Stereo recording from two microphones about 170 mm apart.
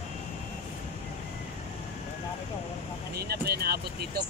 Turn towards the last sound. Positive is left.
turn(degrees=-65)  # may be behind; listen again after turning